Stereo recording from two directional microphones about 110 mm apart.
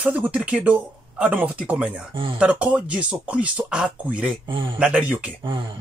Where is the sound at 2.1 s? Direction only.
50° right (ahead or behind).